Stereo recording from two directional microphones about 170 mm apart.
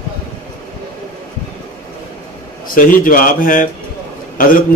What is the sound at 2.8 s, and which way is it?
Speech, 55° left (ahead or behind).